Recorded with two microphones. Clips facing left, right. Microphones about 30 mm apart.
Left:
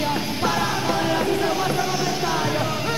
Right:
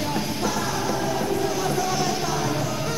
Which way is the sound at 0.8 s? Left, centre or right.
Left.